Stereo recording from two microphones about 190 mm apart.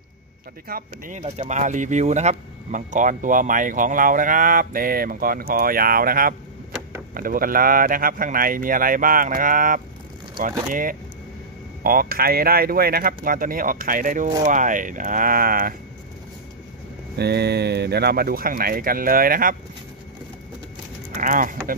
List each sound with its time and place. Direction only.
0.7 s speech: 50° right (ahead or behind)
1.2 s speech: 35° right (ahead or behind)
17.2 s speech: 60° right (ahead or behind)
21.1 s a sound: 45° right (ahead or behind)